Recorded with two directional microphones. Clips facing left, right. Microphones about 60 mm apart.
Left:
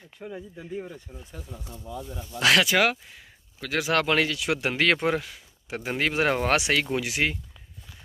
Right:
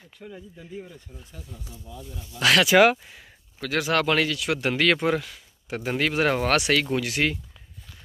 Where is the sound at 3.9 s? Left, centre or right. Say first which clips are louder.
Even; left.